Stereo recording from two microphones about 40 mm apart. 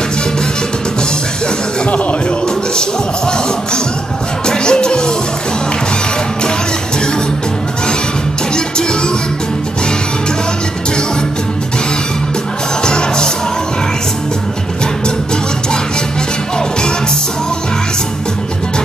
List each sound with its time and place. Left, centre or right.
2.4 s music: centre
8.5 s music: centre
12.8 s music: left